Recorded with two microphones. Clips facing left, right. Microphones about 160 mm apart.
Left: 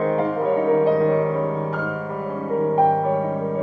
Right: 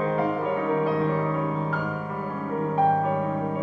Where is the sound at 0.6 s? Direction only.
45° left (ahead or behind).